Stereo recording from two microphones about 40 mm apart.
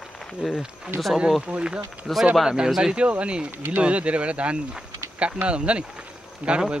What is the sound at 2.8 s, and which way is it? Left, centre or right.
Speech, right.